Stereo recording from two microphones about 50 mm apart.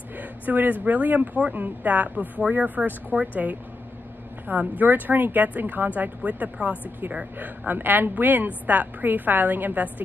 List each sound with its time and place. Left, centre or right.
0.2 s speech: right